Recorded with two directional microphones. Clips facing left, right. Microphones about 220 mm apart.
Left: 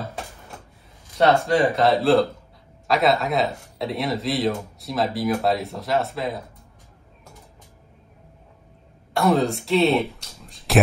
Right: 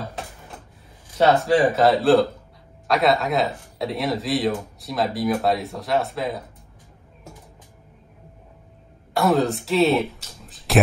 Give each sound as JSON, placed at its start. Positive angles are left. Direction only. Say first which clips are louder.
{"t": 1.1, "sound": "speech", "louder": "right 1 dB", "side_deg": 0}
{"t": 9.1, "sound": "speech", "louder": "even", "side_deg": 0}